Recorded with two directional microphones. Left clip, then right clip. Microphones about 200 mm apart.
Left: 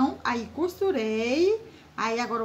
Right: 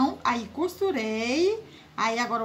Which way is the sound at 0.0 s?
25° right (ahead or behind).